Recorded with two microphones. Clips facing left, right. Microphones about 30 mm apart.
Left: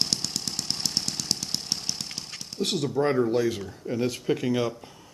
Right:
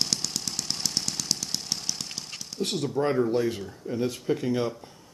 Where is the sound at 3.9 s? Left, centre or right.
Left.